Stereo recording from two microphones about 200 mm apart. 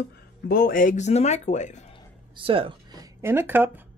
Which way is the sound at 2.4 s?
25° right (ahead or behind).